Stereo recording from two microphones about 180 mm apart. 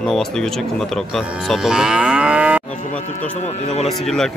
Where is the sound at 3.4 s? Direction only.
40° left (ahead or behind).